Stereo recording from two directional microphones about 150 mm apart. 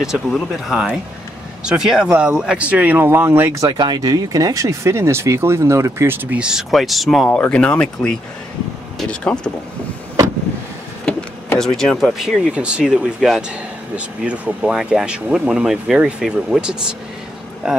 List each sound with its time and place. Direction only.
0.0 s speech: centre (ahead or behind)
3.7 s speech: 30° right (ahead or behind); by 8.2 s 5° left (ahead or behind)
9.2 s speech: 5° left (ahead or behind)
11.1 s speech: 5° left (ahead or behind)